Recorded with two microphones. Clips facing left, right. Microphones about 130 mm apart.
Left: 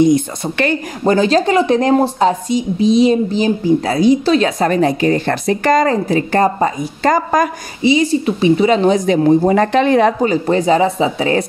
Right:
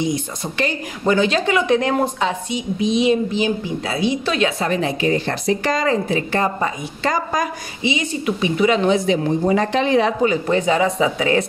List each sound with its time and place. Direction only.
0.0 s a woman's voice: 55° left (ahead or behind)
1.0 s a woman's voice: 35° left (ahead or behind)
7.8 s a woman's voice: 35° left (ahead or behind); by 10.1 s 55° left (ahead or behind)
10.2 s a woman's voice: 35° left (ahead or behind)